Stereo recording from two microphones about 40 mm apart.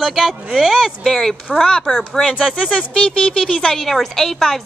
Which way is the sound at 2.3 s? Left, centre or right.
Centre.